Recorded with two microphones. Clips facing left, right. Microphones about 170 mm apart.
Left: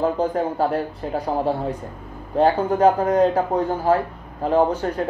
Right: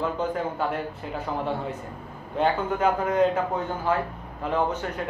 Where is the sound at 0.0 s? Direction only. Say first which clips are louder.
Left 6 dB; 35° left (ahead or behind).